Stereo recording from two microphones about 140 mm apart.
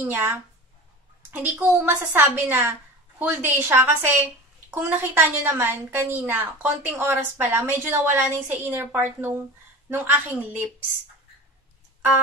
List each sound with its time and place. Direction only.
0.0 s a woman's voice: 15° right (ahead or behind)